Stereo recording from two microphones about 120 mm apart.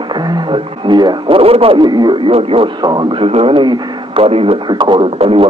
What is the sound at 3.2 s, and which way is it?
Speech, 55° right (ahead or behind).